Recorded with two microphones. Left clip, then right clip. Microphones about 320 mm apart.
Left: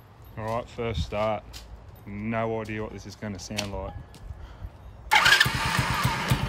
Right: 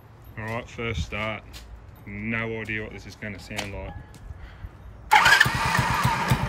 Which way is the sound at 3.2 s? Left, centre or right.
Left.